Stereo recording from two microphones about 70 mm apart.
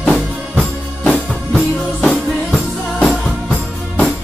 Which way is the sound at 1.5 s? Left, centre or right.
Centre.